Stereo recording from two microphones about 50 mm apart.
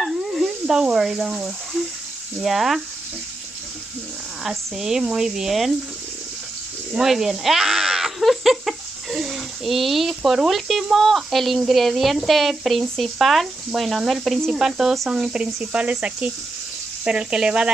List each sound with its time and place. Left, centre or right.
0.0 s sizzle: centre
0.9 s speech: centre
4.4 s speech: centre
6.9 s speech: centre